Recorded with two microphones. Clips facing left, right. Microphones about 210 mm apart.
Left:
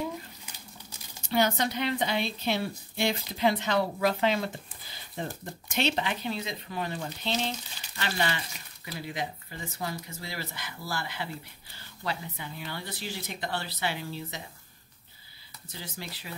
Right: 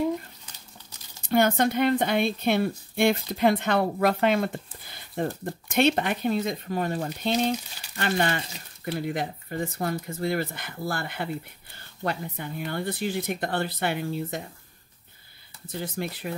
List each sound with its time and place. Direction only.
1.3 s a woman's voice: 55° right (ahead or behind)
15.7 s a woman's voice: 55° right (ahead or behind)